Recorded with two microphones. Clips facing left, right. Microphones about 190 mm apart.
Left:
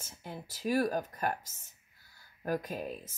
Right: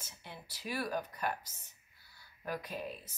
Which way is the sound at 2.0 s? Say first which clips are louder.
Left 5 dB; 45° left (ahead or behind).